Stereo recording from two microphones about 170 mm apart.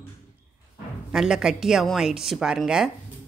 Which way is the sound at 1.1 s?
5° right (ahead or behind).